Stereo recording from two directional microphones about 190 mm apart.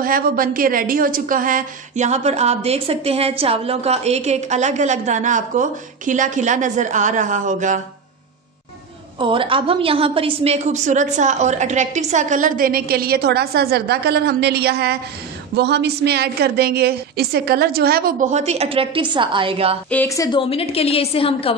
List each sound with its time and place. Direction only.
0.0 s a woman's voice: 45° right (ahead or behind)
9.2 s a woman's voice: 25° right (ahead or behind)
19.9 s speech: 10° left (ahead or behind)
20.2 s a woman's voice: 30° left (ahead or behind)